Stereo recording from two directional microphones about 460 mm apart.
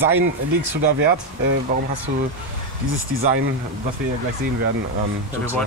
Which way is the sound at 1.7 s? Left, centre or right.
Centre.